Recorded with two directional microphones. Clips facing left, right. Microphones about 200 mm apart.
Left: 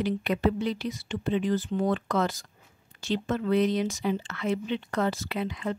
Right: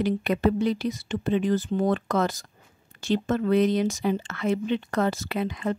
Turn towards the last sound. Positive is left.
turn(degrees=-45)  # may be behind; listen again after turning